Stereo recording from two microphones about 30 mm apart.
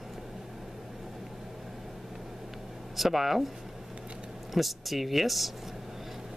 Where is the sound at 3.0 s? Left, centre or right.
Centre.